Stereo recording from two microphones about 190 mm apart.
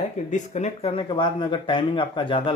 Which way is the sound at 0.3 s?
40° left (ahead or behind).